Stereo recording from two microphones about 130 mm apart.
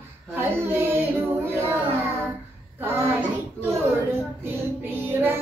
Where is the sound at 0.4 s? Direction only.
20° right (ahead or behind).